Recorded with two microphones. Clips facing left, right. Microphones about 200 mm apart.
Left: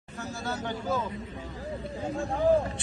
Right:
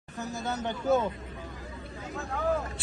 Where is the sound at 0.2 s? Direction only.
20° right (ahead or behind).